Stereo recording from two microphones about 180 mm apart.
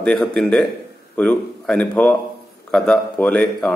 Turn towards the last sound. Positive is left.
turn(degrees=5)  # may be behind; listen again after turning